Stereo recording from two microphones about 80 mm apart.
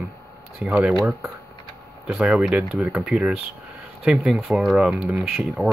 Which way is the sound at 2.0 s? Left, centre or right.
Centre.